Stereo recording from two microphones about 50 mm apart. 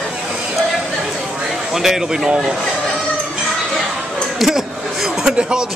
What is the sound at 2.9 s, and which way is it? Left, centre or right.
Music, centre.